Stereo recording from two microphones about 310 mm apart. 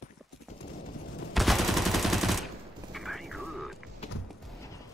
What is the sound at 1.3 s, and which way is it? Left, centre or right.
Machine gun, centre.